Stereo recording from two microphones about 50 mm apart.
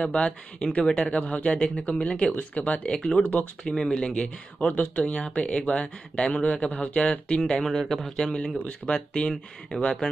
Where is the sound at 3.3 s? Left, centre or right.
Left.